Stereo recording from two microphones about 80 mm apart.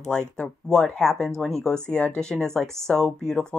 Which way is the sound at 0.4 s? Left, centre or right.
Centre.